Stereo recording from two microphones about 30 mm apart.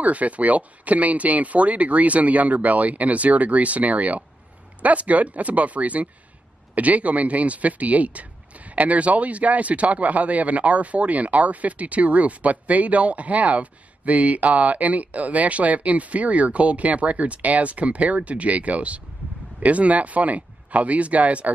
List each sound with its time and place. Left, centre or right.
0.0 s speech: right